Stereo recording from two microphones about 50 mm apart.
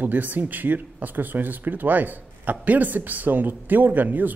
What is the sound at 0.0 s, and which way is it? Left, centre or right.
Speech, right.